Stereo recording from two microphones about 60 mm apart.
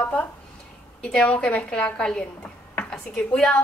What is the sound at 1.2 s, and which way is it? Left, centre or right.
A woman's voice, left.